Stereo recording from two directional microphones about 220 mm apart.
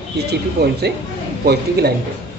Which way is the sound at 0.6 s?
45° right (ahead or behind).